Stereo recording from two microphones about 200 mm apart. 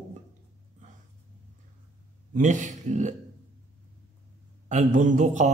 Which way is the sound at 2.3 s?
40° right (ahead or behind).